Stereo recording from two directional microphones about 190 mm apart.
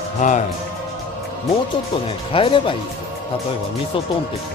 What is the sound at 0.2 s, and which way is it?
Speech, 40° left (ahead or behind).